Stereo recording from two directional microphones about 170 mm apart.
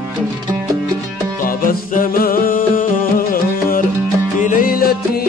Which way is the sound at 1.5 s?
55° left (ahead or behind).